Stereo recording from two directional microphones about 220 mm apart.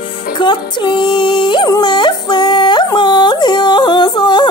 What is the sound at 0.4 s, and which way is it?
Music, 20° left (ahead or behind).